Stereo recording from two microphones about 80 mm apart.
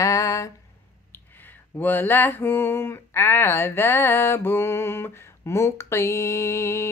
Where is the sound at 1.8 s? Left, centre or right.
Left.